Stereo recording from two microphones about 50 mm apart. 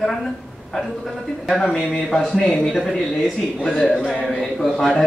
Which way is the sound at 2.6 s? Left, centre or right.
Centre.